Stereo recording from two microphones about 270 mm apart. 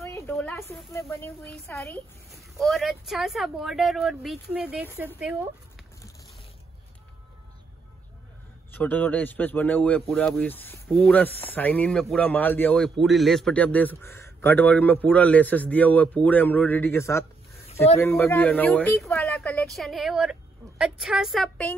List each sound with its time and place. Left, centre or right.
0.0 s speech: centre
2.5 s speech: centre
8.7 s speech: centre